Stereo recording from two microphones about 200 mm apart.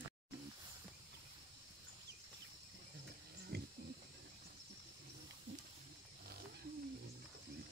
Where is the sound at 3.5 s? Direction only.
55° right (ahead or behind).